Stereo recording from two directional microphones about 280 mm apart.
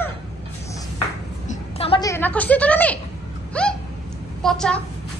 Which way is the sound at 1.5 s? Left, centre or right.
Centre.